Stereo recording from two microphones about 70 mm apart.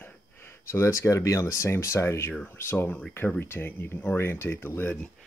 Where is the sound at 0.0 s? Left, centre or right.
Left.